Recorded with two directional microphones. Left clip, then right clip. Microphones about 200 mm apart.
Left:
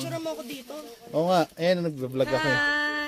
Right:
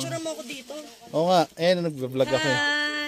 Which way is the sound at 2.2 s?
10° right (ahead or behind).